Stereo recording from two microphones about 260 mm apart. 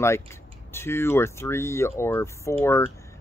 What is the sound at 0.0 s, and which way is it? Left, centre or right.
Speech, centre.